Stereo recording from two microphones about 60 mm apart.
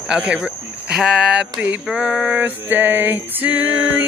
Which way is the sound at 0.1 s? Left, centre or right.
Centre.